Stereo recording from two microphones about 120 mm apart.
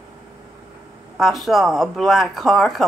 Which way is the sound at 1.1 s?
Centre (ahead or behind).